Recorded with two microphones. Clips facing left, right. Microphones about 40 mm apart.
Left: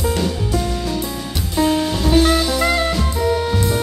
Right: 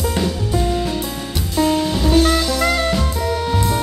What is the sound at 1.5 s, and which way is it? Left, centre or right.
Music, centre.